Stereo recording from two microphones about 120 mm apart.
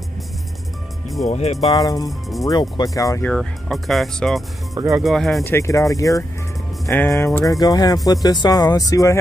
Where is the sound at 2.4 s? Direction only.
30° left (ahead or behind).